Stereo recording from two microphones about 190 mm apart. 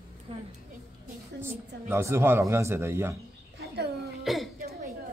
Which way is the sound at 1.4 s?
10° right (ahead or behind).